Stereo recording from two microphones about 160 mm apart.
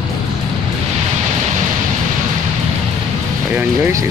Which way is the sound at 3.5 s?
15° right (ahead or behind).